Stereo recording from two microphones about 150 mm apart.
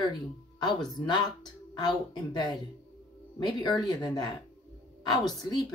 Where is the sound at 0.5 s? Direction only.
30° left (ahead or behind).